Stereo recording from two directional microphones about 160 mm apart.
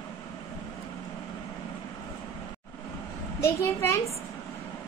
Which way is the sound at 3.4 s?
15° left (ahead or behind).